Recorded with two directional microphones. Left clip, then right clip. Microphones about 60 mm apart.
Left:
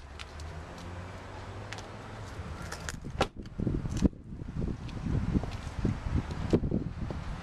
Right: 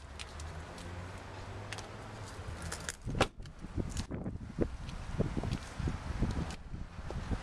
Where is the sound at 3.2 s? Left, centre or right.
Centre.